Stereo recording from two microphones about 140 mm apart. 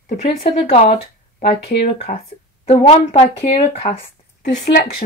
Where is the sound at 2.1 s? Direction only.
65° left (ahead or behind).